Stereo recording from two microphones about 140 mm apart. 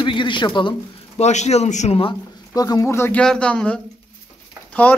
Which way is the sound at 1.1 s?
55° left (ahead or behind).